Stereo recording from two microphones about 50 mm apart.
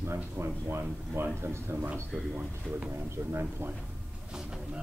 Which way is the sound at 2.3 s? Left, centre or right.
Right.